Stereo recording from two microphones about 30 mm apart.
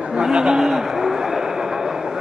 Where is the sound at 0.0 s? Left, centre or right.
Right.